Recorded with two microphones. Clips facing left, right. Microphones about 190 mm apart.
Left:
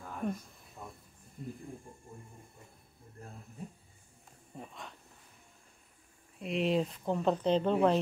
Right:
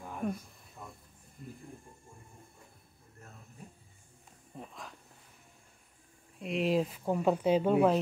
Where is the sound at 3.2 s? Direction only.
30° left (ahead or behind).